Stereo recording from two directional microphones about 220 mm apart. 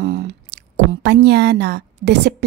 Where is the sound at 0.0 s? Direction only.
50° right (ahead or behind).